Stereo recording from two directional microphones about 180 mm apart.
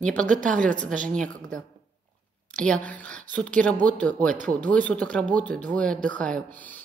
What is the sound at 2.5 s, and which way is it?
Speech, 5° left (ahead or behind).